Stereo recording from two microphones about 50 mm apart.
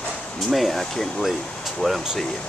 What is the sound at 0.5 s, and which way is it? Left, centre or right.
Speech, centre.